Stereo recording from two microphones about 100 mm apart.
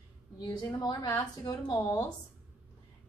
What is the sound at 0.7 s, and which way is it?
A woman's voice, 40° left (ahead or behind).